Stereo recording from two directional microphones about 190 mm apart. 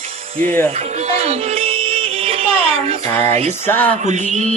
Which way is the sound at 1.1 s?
30° right (ahead or behind).